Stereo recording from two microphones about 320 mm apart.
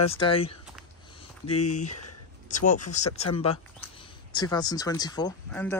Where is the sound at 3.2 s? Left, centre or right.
Centre.